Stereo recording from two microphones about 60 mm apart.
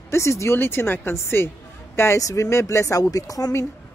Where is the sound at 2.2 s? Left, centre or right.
Left.